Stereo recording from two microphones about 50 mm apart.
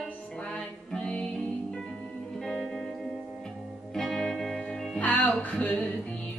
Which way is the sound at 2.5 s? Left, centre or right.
Centre.